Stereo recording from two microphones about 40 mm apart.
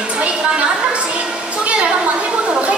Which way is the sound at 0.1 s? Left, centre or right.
Right.